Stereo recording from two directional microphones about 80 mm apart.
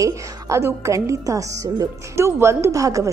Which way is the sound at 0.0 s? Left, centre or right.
Right.